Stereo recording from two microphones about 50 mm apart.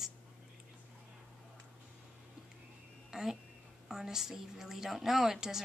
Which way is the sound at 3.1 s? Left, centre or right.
Centre.